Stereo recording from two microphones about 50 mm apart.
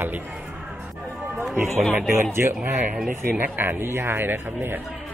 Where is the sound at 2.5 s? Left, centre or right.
Right.